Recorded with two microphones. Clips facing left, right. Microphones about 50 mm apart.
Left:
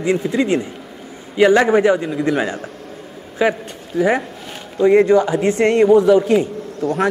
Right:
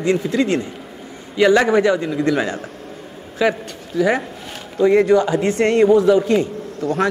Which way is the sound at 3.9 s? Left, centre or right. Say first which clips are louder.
Left 1 dB; left.